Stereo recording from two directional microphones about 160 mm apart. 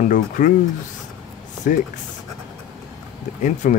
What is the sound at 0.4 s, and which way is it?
Speech, 50° left (ahead or behind).